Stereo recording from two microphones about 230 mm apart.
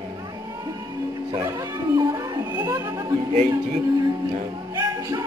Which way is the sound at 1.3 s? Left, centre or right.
Centre.